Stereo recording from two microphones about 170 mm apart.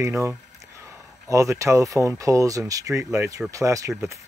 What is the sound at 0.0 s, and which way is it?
Speech, 15° right (ahead or behind).